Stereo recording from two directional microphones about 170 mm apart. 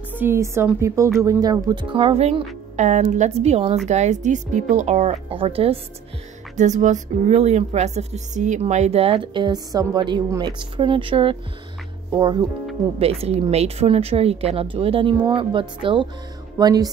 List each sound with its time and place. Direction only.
0.1 s a woman's voice: 15° right (ahead or behind); by 5.8 s 35° right (ahead or behind)
6.5 s speech: 45° right (ahead or behind); by 16.9 s 25° right (ahead or behind)